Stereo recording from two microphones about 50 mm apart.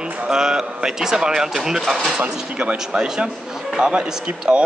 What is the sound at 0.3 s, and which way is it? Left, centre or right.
Speech, centre.